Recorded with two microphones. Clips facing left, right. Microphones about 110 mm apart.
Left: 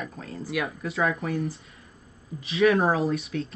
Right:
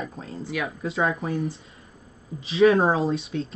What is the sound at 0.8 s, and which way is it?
Speech, 30° right (ahead or behind).